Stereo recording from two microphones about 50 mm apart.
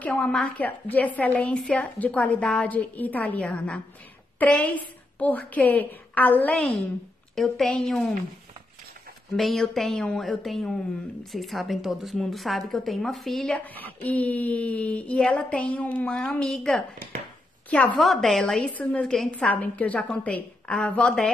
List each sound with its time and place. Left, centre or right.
0.1 s a woman's voice: centre
0.6 s speech: left
1.6 s a woman's voice: centre
2.0 s a woman's voice: left
7.3 s a woman's voice: centre
9.4 s a woman's voice: centre
13.5 s a woman's voice: left
16.4 s a woman's voice: centre
17.6 s a woman's voice: left
17.9 s a woman's voice: centre
18.4 s a woman's voice: centre
18.7 s a woman's voice: left